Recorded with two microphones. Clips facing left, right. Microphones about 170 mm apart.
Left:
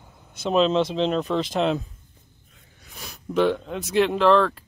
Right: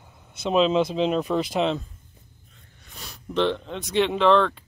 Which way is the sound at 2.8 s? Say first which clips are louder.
Left 3 dB; 5° left (ahead or behind).